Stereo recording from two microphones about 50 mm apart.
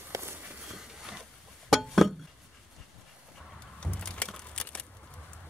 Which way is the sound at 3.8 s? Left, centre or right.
Left.